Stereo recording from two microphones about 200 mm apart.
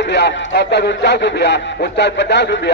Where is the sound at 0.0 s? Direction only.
60° left (ahead or behind).